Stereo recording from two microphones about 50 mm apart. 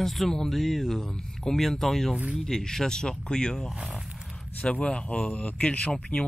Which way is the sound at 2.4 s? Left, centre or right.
Centre.